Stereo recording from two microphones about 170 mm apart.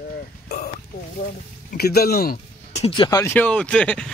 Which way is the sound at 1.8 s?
65° left (ahead or behind).